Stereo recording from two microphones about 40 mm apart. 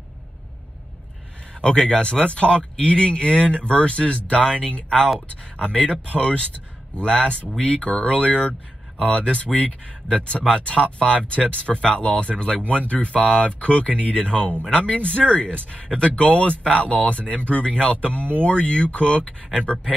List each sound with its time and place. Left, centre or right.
1.6 s speech: left
13.2 s speech: centre
13.5 s speech: left